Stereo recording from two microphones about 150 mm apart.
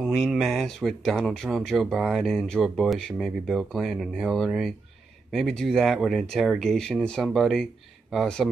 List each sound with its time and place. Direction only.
0.0 s speech: centre (ahead or behind)